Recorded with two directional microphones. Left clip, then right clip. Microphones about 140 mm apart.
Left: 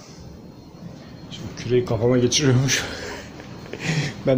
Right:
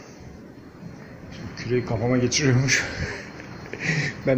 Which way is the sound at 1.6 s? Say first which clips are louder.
Left 5 dB; 20° left (ahead or behind).